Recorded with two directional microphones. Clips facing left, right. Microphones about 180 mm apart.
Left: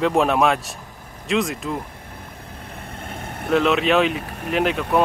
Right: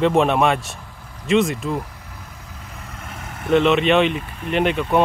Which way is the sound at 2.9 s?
30° left (ahead or behind).